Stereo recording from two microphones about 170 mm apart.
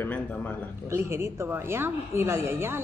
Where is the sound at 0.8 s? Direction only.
15° right (ahead or behind).